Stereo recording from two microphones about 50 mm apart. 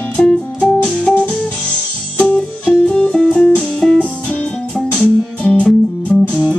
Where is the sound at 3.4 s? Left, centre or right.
Left.